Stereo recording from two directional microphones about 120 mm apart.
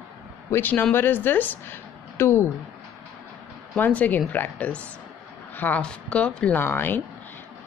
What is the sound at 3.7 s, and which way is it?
A woman's voice, 10° left (ahead or behind).